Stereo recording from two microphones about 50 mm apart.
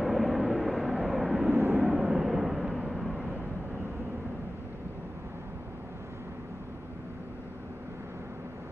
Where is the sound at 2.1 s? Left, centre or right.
Centre.